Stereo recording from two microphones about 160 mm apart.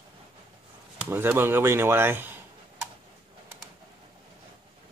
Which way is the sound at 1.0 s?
10° right (ahead or behind).